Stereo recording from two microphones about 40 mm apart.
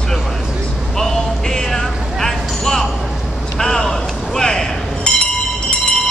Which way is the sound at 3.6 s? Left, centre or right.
Centre.